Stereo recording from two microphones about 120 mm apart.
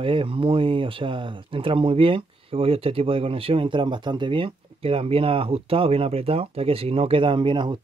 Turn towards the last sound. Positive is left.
turn(degrees=-45)  # may be behind; listen again after turning